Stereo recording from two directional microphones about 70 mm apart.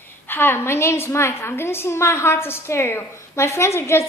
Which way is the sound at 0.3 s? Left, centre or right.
Left.